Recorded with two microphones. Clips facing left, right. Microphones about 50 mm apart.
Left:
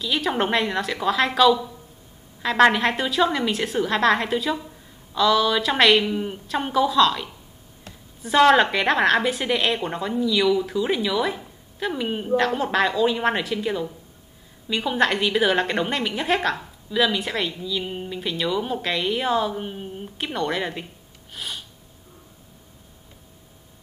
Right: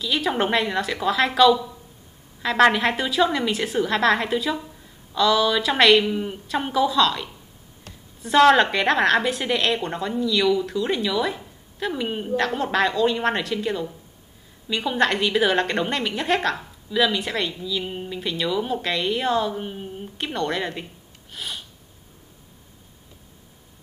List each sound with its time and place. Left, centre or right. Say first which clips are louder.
0.0 s a woman's voice: even; centre
21.3 s sniff: even; centre